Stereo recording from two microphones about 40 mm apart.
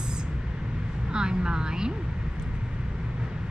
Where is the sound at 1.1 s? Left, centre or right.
Centre.